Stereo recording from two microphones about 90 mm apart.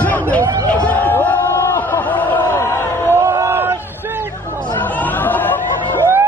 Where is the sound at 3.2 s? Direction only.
30° right (ahead or behind).